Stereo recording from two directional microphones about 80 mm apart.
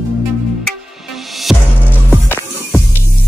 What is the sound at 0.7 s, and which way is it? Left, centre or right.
Music, centre.